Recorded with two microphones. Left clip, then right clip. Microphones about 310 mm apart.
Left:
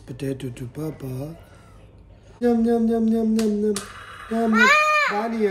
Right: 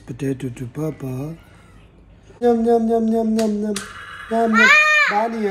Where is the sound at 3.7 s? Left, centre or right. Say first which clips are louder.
Right 3 dB; left.